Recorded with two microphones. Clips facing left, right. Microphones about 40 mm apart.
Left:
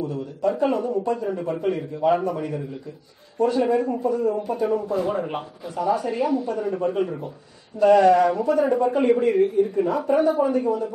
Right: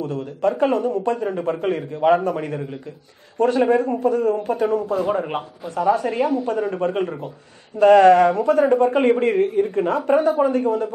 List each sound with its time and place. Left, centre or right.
0.0 s a man's voice: right
5.0 s a man's voice: right